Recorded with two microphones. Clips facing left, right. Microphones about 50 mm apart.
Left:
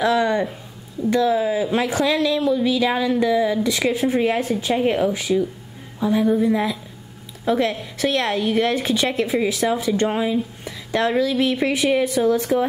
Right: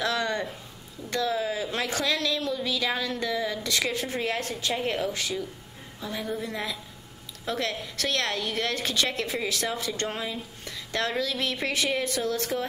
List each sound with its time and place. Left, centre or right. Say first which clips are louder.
0.0 s a woman's voice: left 9 dB; centre